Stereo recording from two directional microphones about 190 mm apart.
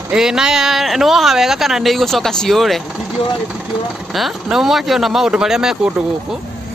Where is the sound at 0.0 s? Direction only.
5° right (ahead or behind).